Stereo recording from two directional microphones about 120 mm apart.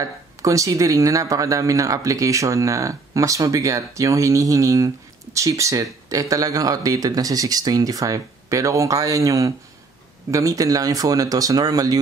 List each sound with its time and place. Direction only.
0.0 s speech: 25° right (ahead or behind)